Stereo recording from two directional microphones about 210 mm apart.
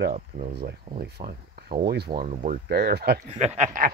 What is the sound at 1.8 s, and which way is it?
Speech, 50° right (ahead or behind).